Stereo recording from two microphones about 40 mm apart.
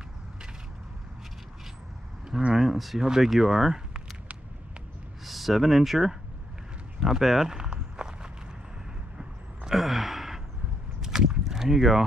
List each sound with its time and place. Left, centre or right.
2.5 s speech: centre
5.2 s speech: centre
7.7 s walk: centre
9.7 s gasp: centre
11.0 s a sound: centre